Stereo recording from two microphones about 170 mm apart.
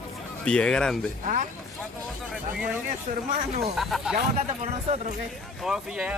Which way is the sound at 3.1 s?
45° right (ahead or behind).